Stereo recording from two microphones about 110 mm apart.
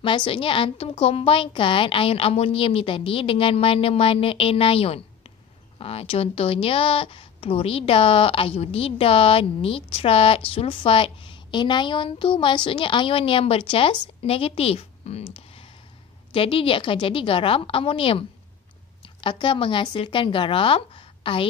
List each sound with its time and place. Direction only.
0.0 s a woman's voice: 50° left (ahead or behind); by 15.2 s 65° left (ahead or behind)
15.3 s a sound: 60° left (ahead or behind)
16.3 s a woman's voice: 55° left (ahead or behind)